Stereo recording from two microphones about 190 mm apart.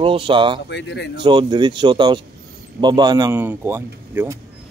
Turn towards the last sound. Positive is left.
turn(degrees=-10)  # may be behind; listen again after turning